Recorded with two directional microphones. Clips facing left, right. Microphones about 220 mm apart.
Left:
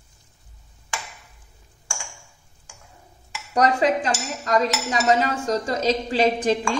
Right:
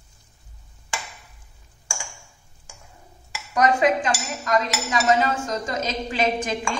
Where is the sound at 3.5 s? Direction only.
35° left (ahead or behind).